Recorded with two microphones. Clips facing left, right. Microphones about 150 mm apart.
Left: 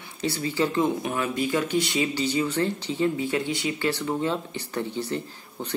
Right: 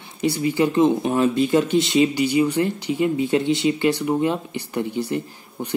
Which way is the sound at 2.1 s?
15° right (ahead or behind).